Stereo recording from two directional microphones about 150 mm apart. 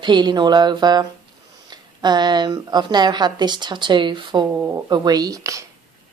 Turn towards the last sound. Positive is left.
turn(degrees=-20)  # may be behind; listen again after turning